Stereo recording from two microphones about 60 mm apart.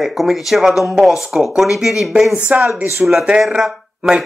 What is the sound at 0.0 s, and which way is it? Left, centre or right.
Speech, centre.